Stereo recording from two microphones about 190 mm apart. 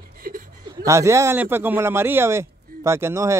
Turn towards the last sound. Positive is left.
turn(degrees=-15)  # may be behind; listen again after turning